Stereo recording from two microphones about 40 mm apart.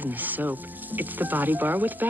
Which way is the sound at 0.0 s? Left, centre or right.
Right.